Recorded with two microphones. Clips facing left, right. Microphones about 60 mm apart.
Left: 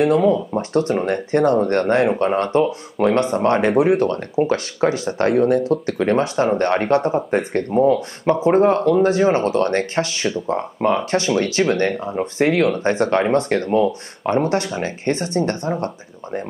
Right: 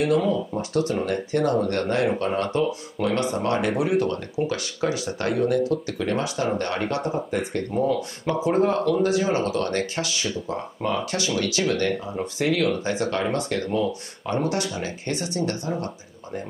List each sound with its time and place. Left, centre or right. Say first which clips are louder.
0.0 s speech: left 6 dB; left